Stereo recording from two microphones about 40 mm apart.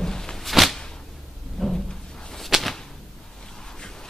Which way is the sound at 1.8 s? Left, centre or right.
Centre.